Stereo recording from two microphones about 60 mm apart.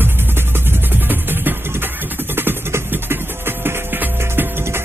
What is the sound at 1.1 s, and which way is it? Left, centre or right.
Music, right.